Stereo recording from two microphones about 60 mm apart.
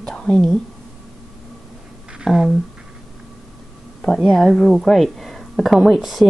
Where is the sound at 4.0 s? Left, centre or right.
Centre.